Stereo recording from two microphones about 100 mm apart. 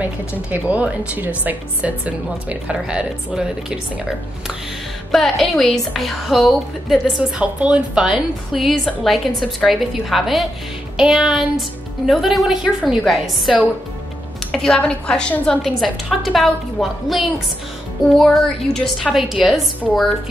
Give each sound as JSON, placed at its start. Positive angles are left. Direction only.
{"t": 0.0, "sound": "speech", "side_deg": -15}
{"t": 5.1, "sound": "a woman's voice", "side_deg": 0}